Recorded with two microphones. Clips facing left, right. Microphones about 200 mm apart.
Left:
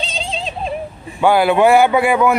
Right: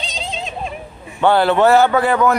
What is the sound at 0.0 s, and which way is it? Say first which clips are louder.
Synthetic singing: left 3 dB; 30° left (ahead or behind).